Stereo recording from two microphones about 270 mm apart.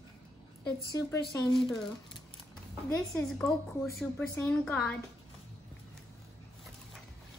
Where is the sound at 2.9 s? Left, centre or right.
Centre.